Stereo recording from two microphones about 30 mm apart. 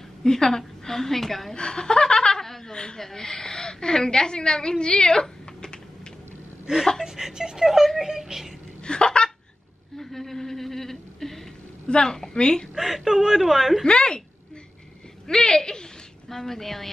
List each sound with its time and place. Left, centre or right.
0.2 s a woman's voice: left
1.5 s chuckle: left
2.7 s a woman's voice: left
3.0 s a woman's voice: centre
6.7 s a woman's voice: centre
7.6 s a woman's voice: centre
8.8 s hiccup: left
9.9 s a woman's voice: centre
11.9 s a woman's voice: left
12.7 s a woman's voice: centre
13.8 s a woman's voice: left
15.2 s a woman's voice: left
16.3 s a woman's voice: centre